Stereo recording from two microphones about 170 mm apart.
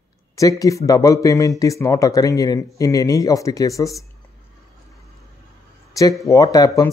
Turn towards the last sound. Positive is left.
turn(degrees=20)  # may be behind; listen again after turning